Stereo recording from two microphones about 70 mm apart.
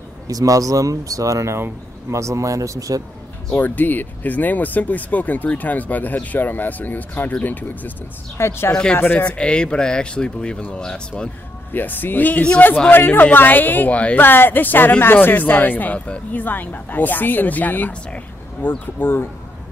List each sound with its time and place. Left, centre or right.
0.3 s speech: right
3.5 s a woman's voice: left
8.4 s a woman's voice: left
9.2 s speech: centre
11.7 s a woman's voice: left
12.9 s a woman's voice: left